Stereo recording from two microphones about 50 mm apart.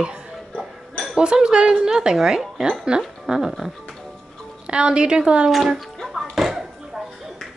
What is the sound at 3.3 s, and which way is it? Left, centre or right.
Speech, centre.